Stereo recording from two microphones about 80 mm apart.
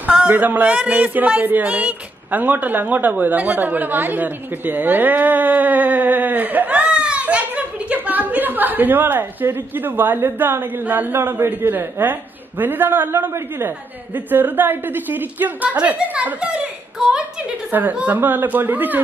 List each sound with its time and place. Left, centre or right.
0.0 s a man's voice: centre
17.6 s a man's voice: right